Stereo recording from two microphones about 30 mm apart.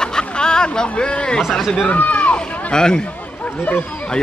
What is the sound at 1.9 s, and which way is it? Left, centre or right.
Speech, left.